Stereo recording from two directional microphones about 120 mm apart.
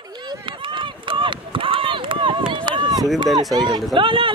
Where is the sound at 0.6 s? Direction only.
45° right (ahead or behind).